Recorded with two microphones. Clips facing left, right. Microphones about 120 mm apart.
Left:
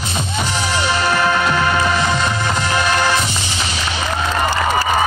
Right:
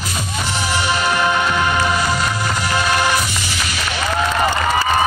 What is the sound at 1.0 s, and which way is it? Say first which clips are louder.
Music: left 2 dB; 15° right (ahead or behind).